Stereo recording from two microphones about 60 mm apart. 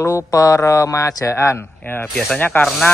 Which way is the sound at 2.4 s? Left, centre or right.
Left.